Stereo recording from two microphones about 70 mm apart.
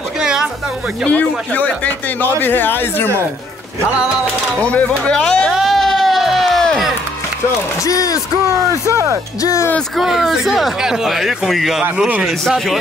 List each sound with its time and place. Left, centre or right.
0.2 s a sound: centre
1.0 s speech: left
4.6 s speech: centre
5.5 s music: centre
7.8 s speech: left
8.8 s speech: right
9.4 s speech: left
9.9 s speech: centre